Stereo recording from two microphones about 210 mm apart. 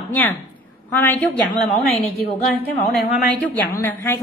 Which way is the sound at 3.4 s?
10° left (ahead or behind).